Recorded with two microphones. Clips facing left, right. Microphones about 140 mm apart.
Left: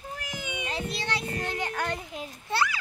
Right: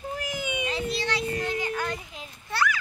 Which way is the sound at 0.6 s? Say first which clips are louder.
Right 2 dB; 50° left (ahead or behind).